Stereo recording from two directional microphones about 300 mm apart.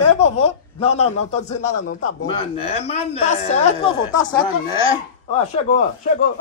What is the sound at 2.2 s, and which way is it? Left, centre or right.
A man's voice, centre.